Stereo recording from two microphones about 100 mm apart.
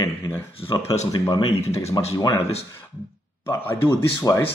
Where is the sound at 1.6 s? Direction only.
90° left.